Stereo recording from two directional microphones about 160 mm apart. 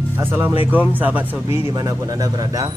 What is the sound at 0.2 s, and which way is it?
Speech, 15° right (ahead or behind).